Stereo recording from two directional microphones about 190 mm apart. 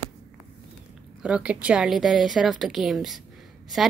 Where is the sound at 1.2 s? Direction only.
5° right (ahead or behind).